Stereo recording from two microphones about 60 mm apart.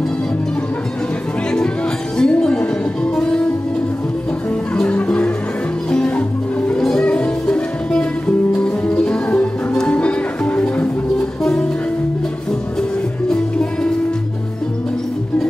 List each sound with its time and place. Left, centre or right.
2.1 s music: centre
4.8 s music: left
13.3 s music: centre